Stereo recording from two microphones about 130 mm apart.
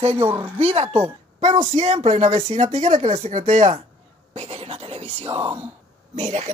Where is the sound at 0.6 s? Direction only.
50° right (ahead or behind).